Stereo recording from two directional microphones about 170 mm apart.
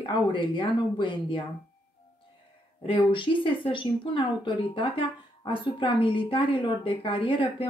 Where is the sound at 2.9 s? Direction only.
30° left (ahead or behind).